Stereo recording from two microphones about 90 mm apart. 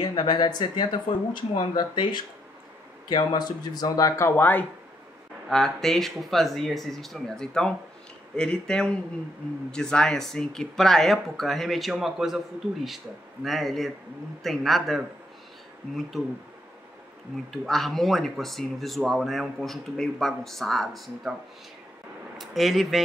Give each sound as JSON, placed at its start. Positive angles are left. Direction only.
{"t": 0.0, "sound": "speech", "side_deg": 55}
{"t": 4.4, "sound": "speech", "side_deg": 20}
{"t": 5.5, "sound": "speech", "side_deg": 5}
{"t": 17.5, "sound": "speech", "side_deg": 0}
{"t": 22.4, "sound": "speech", "side_deg": 0}